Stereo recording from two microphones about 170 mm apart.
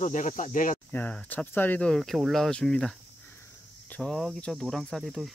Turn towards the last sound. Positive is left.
turn(degrees=0)  # may be behind; listen again after turning